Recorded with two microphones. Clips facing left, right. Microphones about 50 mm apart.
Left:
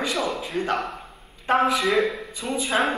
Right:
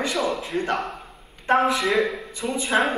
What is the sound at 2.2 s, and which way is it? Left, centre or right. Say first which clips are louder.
Speech: right 1 dB; right.